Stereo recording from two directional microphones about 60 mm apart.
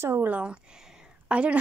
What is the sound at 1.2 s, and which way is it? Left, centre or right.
Speech, centre.